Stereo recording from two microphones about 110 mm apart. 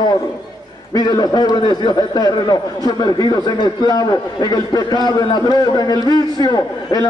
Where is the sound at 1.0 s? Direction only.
35° left (ahead or behind).